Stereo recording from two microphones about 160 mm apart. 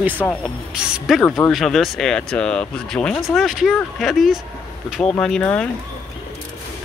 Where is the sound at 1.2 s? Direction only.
15° left (ahead or behind).